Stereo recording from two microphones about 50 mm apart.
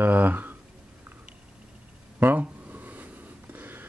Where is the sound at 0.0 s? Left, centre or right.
Right.